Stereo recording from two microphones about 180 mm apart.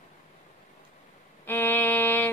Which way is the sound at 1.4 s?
10° left (ahead or behind).